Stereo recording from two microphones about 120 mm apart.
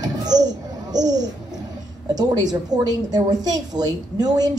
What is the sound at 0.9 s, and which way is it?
A child's voice, 35° right (ahead or behind).